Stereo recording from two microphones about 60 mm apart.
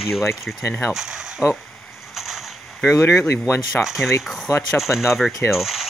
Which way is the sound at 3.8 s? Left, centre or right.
Centre.